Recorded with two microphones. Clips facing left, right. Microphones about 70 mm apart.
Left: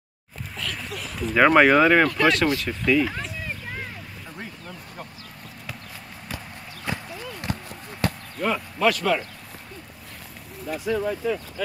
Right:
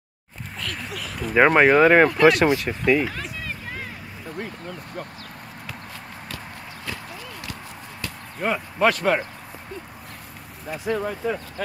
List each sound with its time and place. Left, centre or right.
0.6 s a sound: centre
1.3 s speech: centre
6.9 s clip-clop: left
7.5 s basketball bounce: left
8.4 s speech: right
10.9 s speech: right